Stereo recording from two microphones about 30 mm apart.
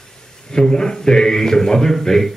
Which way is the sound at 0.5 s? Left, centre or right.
Left.